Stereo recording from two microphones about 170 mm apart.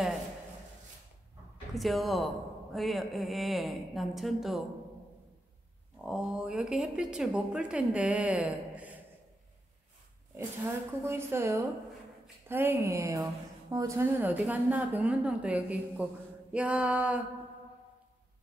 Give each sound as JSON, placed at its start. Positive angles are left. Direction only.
{"t": 1.7, "sound": "speech", "side_deg": 0}
{"t": 5.9, "sound": "speech", "side_deg": 0}
{"t": 11.1, "sound": "a woman's voice", "side_deg": -15}